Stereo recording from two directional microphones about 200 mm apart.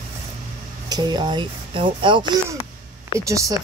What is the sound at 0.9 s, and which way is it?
Speech, 20° right (ahead or behind).